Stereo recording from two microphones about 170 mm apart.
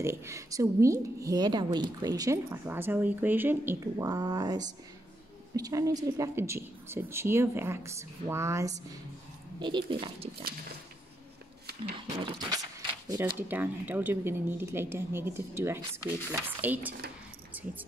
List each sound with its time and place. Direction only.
0.0 s a woman's voice: 15° right (ahead or behind)
12.3 s a woman's voice: 25° right (ahead or behind)
13.4 s speech: 10° right (ahead or behind)